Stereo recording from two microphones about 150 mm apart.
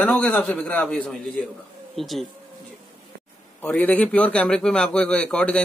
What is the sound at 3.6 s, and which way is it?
A man's voice, 10° left (ahead or behind).